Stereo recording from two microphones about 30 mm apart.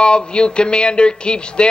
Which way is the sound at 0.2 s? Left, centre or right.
Left.